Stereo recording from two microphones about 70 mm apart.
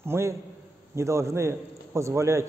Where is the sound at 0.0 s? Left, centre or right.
Right.